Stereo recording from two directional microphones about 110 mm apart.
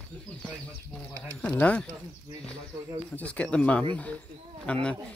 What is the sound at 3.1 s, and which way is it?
Speech, 10° left (ahead or behind).